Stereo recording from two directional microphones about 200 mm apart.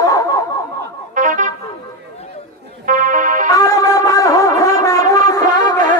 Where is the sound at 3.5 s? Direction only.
15° left (ahead or behind).